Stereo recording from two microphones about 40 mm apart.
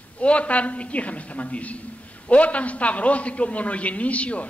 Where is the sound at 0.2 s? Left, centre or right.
Left.